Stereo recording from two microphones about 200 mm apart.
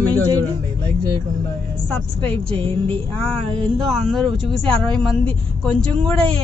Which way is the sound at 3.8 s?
Centre (ahead or behind).